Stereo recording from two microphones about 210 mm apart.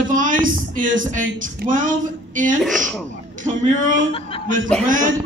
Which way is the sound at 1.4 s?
40° right (ahead or behind).